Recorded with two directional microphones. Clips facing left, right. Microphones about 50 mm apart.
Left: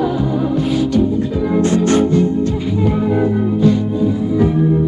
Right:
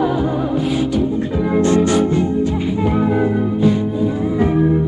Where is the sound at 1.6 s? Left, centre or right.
Right.